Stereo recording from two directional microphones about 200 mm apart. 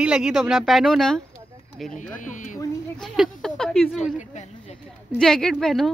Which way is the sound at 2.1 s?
40° left (ahead or behind).